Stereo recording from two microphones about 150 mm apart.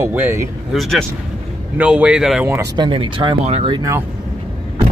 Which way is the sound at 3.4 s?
45° right (ahead or behind).